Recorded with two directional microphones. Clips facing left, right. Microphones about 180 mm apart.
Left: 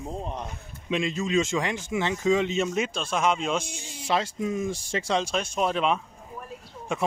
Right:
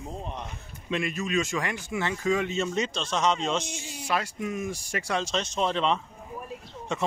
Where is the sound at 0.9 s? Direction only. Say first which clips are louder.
Left 3 dB; 20° left (ahead or behind).